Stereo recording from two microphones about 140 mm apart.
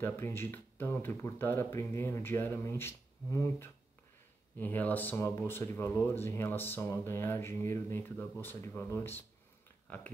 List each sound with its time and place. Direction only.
0.0 s speech: 15° left (ahead or behind)